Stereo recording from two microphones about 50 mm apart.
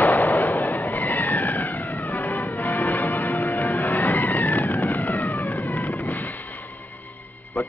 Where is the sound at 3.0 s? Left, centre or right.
Left.